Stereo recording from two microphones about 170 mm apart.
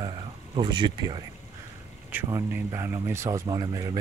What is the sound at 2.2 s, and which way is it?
Speech, 15° right (ahead or behind).